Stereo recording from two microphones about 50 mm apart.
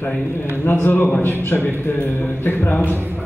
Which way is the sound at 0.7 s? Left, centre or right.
Left.